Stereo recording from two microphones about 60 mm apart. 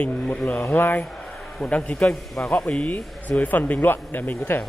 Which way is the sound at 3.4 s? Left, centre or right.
Left.